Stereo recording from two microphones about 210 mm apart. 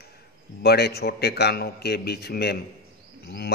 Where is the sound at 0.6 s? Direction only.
50° left (ahead or behind).